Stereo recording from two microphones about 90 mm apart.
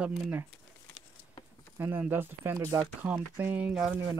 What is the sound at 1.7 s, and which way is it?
Speech, 25° right (ahead or behind).